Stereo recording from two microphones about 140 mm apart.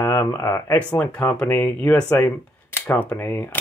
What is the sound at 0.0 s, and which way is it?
Speech, 20° left (ahead or behind).